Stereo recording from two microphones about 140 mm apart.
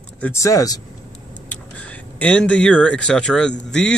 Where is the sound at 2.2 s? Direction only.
10° left (ahead or behind).